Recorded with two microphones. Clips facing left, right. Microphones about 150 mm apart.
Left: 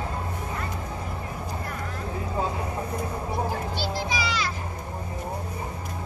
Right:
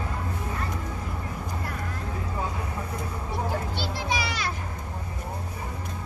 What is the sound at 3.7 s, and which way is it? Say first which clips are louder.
Children playing: left 1 dB; 60° right (ahead or behind).